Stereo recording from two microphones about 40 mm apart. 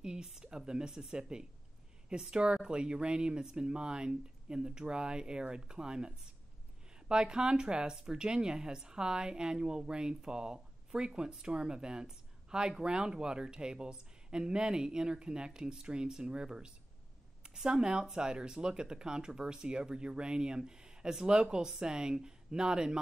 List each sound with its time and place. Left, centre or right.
0.0 s speech: centre